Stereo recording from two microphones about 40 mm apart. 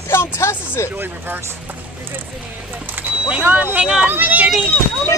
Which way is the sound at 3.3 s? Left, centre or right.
Right.